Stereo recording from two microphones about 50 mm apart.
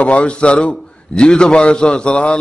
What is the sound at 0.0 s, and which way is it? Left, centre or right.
A man's voice, left.